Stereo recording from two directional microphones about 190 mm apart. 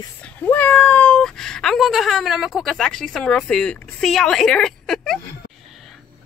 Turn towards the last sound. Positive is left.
turn(degrees=0)  # may be behind; listen again after turning